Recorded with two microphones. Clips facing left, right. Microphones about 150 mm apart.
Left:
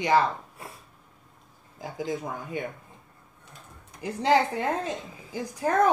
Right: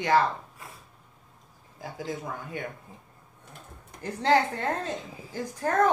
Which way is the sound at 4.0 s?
15° left (ahead or behind).